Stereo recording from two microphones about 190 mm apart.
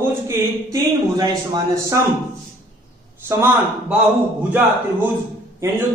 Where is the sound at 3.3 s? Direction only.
15° right (ahead or behind).